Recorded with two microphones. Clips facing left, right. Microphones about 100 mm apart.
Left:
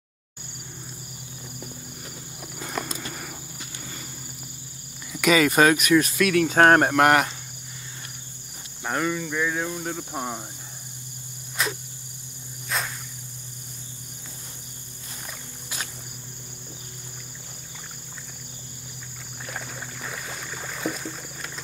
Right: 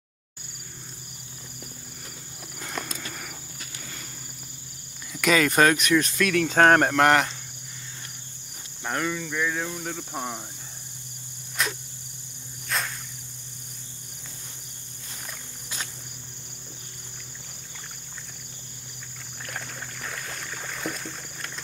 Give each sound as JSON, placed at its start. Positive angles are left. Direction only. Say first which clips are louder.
{"t": 2.6, "sound": "a sound", "louder": "left 3 dB", "side_deg": 5}
{"t": 5.1, "sound": "speech", "louder": "left 2 dB", "side_deg": 5}
{"t": 8.8, "sound": "speech", "louder": "left 2 dB", "side_deg": 10}
{"t": 11.6, "sound": "cricket", "louder": "left 1 dB", "side_deg": 0}
{"t": 19.5, "sound": "boat", "louder": "left 1 dB", "side_deg": 5}